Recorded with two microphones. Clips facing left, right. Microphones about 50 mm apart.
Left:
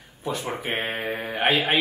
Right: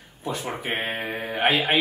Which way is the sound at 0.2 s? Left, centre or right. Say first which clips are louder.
Left 1 dB; centre.